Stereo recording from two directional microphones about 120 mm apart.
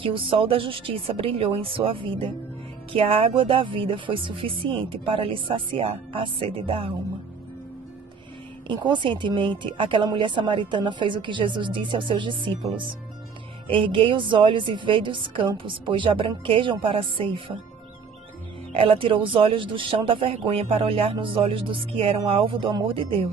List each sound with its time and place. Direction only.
0.0 s speech: 45° right (ahead or behind)
8.6 s a woman's voice: 40° right (ahead or behind)
18.7 s speech: 50° right (ahead or behind)